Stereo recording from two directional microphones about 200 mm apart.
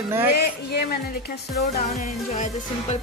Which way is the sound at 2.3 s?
30° left (ahead or behind).